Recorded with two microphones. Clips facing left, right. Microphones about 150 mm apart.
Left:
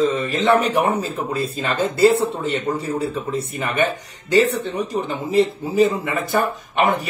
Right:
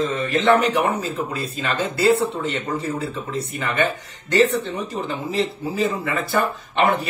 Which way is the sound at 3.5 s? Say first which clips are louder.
Left 1 dB; 15° left (ahead or behind).